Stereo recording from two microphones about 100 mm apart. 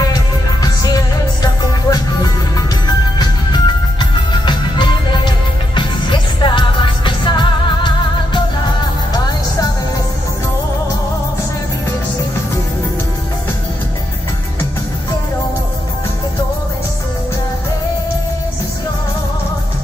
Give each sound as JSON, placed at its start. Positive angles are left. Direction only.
{"t": 0.0, "sound": "music", "side_deg": 40}
{"t": 3.2, "sound": "music", "side_deg": 45}